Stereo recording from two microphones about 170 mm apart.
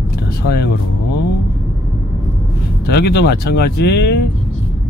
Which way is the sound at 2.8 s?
70° left (ahead or behind).